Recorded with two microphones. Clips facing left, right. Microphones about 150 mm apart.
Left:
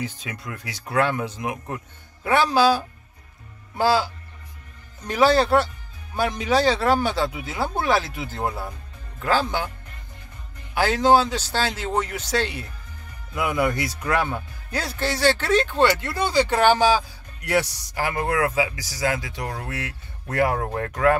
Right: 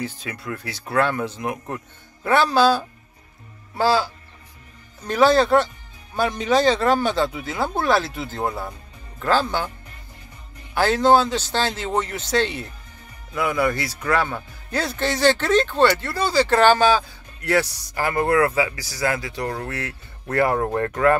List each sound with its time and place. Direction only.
0.0 s speech: 15° left (ahead or behind)
10.7 s speech: 10° left (ahead or behind)
20.5 s speech: centre (ahead or behind)